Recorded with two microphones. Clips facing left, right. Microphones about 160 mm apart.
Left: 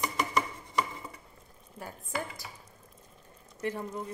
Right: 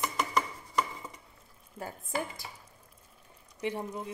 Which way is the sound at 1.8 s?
25° right (ahead or behind).